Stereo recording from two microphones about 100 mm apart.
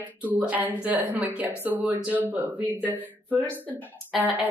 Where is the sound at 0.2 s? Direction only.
15° right (ahead or behind).